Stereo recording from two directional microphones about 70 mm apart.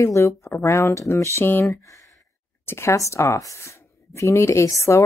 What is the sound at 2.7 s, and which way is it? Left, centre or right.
Speech, left.